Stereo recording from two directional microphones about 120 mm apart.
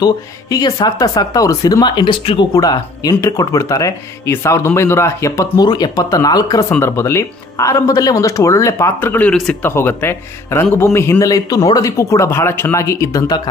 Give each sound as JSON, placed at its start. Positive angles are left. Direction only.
{"t": 0.0, "sound": "speech", "side_deg": 35}
{"t": 2.5, "sound": "speech", "side_deg": 30}